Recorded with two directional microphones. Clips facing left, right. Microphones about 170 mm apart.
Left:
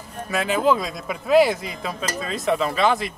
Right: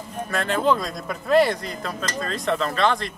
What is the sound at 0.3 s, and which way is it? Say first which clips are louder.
Speech: left 2 dB; 5° left (ahead or behind).